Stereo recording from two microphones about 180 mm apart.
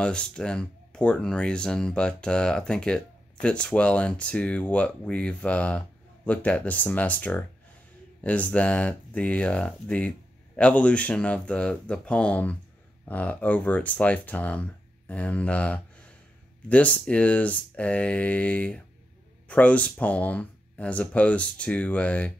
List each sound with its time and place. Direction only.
0.0 s speech: 5° left (ahead or behind)